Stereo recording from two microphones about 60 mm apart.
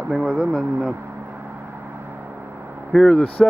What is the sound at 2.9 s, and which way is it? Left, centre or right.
Speech, centre.